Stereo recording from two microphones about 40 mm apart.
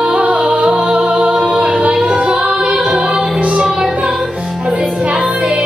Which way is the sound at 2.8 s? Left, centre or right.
Centre.